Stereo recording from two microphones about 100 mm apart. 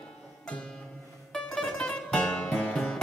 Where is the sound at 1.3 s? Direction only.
5° left (ahead or behind).